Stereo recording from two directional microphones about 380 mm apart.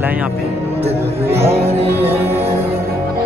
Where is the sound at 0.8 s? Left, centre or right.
Centre.